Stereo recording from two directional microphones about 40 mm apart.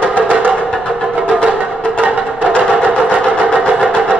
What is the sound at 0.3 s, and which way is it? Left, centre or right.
Music, right.